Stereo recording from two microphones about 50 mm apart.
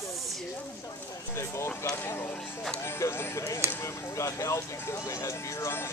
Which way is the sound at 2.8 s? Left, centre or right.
Left.